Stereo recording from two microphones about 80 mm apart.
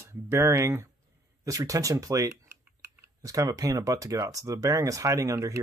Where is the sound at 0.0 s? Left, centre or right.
Right.